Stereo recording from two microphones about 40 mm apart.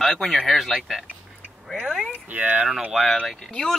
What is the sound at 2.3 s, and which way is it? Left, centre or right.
Speech, right.